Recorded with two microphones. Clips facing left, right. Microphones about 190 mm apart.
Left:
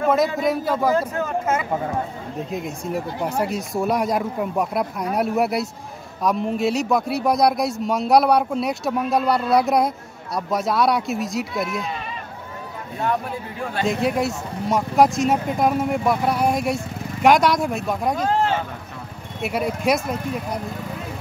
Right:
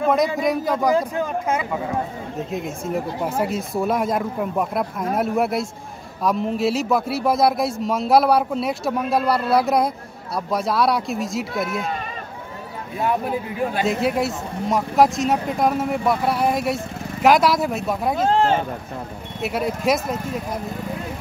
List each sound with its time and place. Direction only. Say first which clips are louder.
0.0 s a man's voice: even; centre (ahead or behind)
0.9 s speech: right 1 dB; 15° right (ahead or behind)
2.5 s speech: right 1 dB; centre (ahead or behind)
13.0 s speech: right 2 dB; 15° right (ahead or behind)
13.8 s speech: left 3 dB; centre (ahead or behind)
18.3 s speech: right 4 dB; 30° right (ahead or behind)
19.4 s speech: even; centre (ahead or behind)